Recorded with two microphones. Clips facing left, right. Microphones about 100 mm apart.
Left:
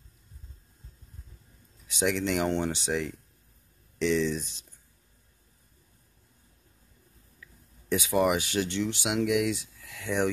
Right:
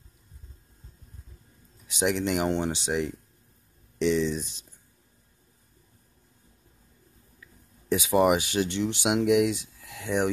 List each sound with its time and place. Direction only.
1.9 s speech: 20° right (ahead or behind)
7.9 s speech: 20° right (ahead or behind)